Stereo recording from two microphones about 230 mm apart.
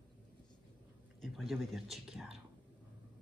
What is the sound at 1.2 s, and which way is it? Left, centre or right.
Speech, centre.